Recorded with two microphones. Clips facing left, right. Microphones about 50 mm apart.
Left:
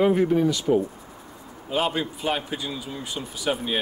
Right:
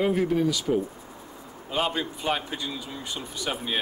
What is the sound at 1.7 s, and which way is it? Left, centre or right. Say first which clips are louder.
A man's voice: left 2 dB; centre.